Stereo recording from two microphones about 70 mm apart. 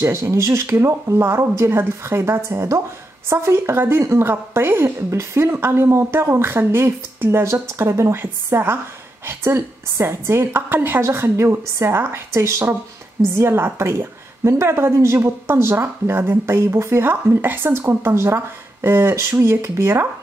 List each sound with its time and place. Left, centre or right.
0.0 s a woman's voice: right